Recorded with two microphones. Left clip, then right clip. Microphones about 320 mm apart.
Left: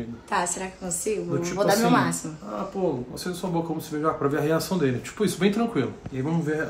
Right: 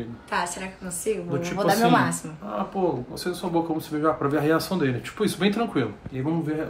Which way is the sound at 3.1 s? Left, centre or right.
Centre.